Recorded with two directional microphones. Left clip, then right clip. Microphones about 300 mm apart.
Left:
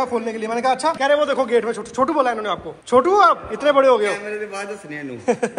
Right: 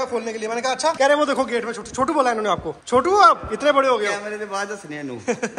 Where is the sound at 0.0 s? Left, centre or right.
Centre.